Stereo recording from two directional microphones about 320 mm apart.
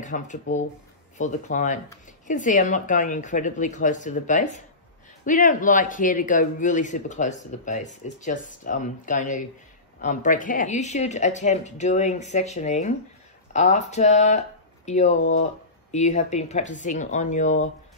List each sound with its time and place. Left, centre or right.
0.0 s speech: left